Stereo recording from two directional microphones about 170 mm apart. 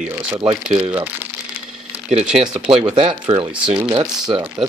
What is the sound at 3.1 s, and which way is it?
Speech, 30° right (ahead or behind).